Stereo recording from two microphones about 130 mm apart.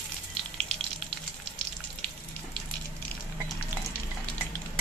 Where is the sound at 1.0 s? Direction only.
5° left (ahead or behind).